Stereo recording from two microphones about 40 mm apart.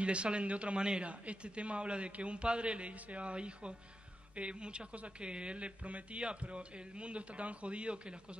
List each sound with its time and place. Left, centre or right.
0.0 s a man's voice: right